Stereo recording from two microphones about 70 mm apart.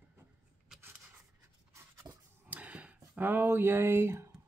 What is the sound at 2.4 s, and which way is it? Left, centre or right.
Speech, centre.